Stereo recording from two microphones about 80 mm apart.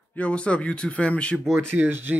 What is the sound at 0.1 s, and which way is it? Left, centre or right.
Speech, centre.